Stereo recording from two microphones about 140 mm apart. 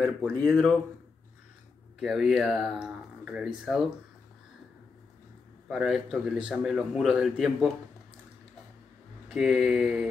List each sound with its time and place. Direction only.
0.3 s speech: 5° left (ahead or behind)
2.0 s speech: 5° right (ahead or behind)
5.7 s speech: 5° right (ahead or behind)
9.3 s speech: centre (ahead or behind)